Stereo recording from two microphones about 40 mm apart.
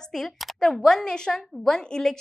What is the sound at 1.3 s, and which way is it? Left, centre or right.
Speech, centre.